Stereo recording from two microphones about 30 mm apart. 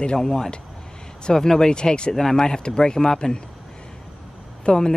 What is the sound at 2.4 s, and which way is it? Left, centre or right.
Speech, left.